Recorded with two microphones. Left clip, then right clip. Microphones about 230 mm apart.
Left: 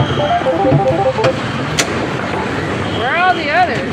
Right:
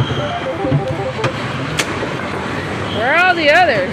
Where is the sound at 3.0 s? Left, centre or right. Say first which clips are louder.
Right 3 dB; right.